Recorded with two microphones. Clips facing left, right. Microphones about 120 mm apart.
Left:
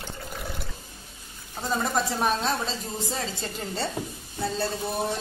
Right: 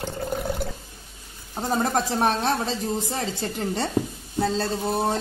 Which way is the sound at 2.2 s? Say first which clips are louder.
Right 3 dB; 70° right (ahead or behind).